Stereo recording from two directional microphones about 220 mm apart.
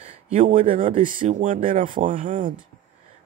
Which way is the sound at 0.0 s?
30° right (ahead or behind).